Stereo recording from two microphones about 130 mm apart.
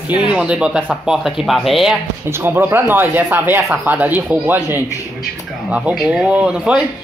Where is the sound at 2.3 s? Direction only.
15° right (ahead or behind).